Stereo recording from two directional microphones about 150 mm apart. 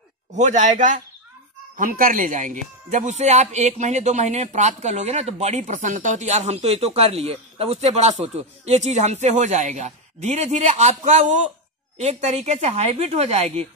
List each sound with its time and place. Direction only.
0.3 s a man's voice: 50° right (ahead or behind)